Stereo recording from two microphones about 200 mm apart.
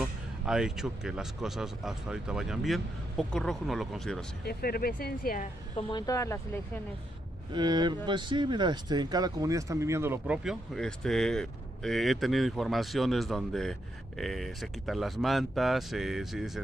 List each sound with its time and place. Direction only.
0.0 s speech: 5° right (ahead or behind)
4.5 s speech: 50° left (ahead or behind)
5.8 s speech: 25° left (ahead or behind)
7.5 s speech: 20° right (ahead or behind); by 16.6 s centre (ahead or behind)